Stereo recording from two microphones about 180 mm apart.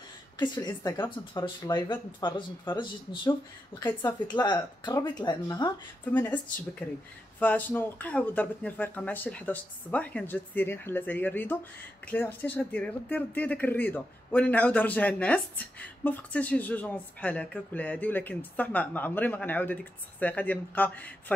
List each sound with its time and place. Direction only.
0.4 s speech: 25° left (ahead or behind)
3.8 s speech: 10° left (ahead or behind)
4.4 s speech: 25° left (ahead or behind)
6.1 s speech: 10° left (ahead or behind)